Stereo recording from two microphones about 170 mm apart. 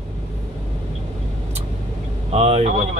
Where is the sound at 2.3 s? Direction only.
40° right (ahead or behind).